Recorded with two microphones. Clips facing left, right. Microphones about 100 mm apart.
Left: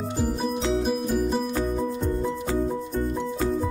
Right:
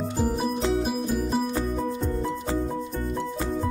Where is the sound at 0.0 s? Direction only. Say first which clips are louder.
Right 1 dB; centre (ahead or behind).